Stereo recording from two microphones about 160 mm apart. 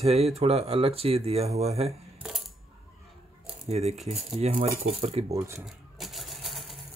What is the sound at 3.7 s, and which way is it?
Speech, 40° right (ahead or behind).